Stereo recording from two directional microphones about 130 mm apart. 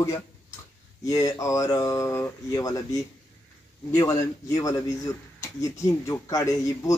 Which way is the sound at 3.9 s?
25° left (ahead or behind).